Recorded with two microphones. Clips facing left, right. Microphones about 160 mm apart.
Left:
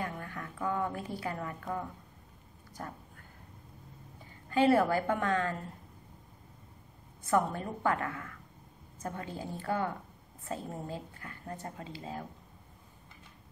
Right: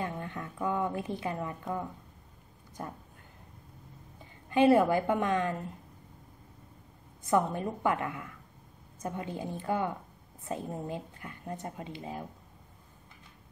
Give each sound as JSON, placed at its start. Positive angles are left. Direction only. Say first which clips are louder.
{"t": 0.0, "sound": "a sound", "louder": "right 2 dB", "side_deg": -25}
{"t": 2.8, "sound": "speech", "louder": "right 2 dB", "side_deg": -20}
{"t": 4.5, "sound": "a woman's voice", "louder": "right 3 dB", "side_deg": -20}
{"t": 7.2, "sound": "speech", "louder": "right 2 dB", "side_deg": -20}